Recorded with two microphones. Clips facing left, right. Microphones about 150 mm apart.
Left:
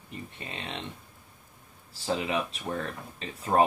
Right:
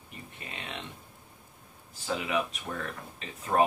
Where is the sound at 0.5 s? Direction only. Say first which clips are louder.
Left 2 dB; 30° left (ahead or behind).